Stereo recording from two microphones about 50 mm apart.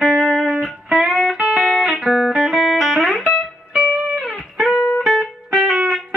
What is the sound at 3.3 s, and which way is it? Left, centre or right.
Music, centre.